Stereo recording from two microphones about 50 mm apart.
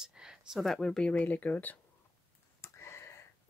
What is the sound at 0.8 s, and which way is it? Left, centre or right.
Speech, centre.